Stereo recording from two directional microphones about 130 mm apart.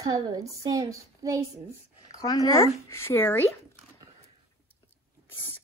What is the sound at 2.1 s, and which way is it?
Speech, 30° left (ahead or behind).